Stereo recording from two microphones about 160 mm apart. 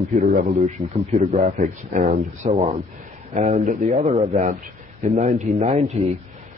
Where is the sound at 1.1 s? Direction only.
45° right (ahead or behind).